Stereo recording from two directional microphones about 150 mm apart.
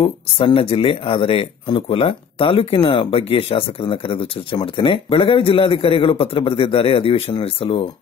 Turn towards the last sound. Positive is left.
turn(degrees=35)  # may be behind; listen again after turning